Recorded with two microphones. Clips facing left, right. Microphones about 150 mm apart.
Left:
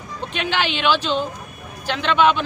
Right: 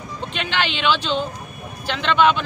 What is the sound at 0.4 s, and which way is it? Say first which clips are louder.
Speech: left 2 dB; 15° left (ahead or behind).